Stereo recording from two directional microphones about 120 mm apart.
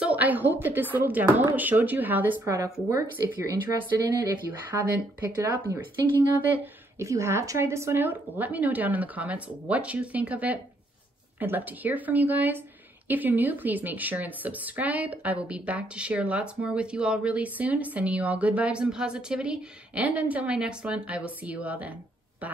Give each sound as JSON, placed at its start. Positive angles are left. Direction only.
{"t": 0.0, "sound": "speech", "side_deg": -15}
{"t": 2.4, "sound": "speech", "side_deg": -25}
{"t": 4.5, "sound": "speech", "side_deg": -15}